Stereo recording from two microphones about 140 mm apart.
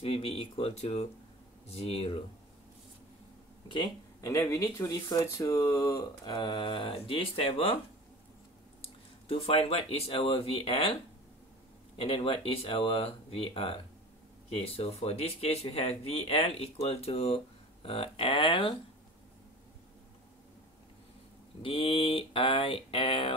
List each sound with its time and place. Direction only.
0.0 s speech: 40° left (ahead or behind)
3.6 s speech: 30° left (ahead or behind)
6.3 s speech: 35° left (ahead or behind)
8.8 s speech: 45° left (ahead or behind)
12.0 s speech: 40° left (ahead or behind)
21.6 s speech: 40° left (ahead or behind)